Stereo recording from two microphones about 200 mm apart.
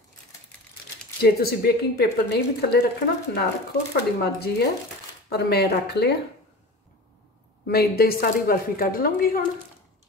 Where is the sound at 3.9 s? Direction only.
55° left (ahead or behind).